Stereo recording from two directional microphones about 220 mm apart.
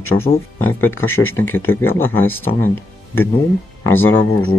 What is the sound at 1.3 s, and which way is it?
Speech, 10° left (ahead or behind).